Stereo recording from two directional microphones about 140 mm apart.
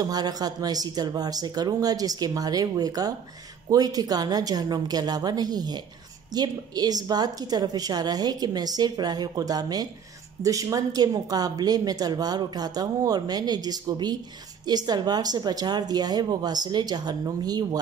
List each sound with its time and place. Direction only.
0.0 s a woman's voice: 25° right (ahead or behind)